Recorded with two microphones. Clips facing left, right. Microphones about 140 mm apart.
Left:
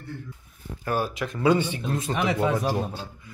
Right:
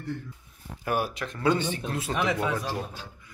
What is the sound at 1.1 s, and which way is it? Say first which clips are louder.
Speech: left 4 dB; 5° left (ahead or behind).